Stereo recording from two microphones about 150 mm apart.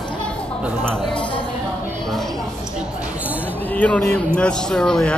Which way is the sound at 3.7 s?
10° left (ahead or behind).